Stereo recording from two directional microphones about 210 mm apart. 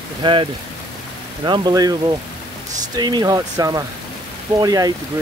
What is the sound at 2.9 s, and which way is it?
Speech, 20° right (ahead or behind).